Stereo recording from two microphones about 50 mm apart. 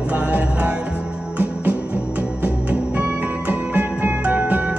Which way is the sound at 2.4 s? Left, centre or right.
Right.